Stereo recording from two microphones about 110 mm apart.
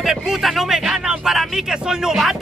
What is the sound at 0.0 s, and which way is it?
Speech, 5° right (ahead or behind).